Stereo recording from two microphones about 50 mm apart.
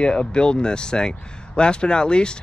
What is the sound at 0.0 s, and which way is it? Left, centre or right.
Speech, centre.